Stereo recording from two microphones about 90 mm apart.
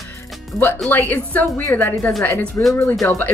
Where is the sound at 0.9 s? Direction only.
20° left (ahead or behind).